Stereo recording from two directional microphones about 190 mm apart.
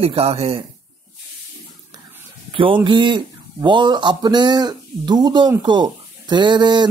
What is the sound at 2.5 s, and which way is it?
Speech, 25° right (ahead or behind).